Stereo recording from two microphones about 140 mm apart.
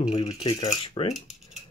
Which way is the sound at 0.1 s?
45° left (ahead or behind).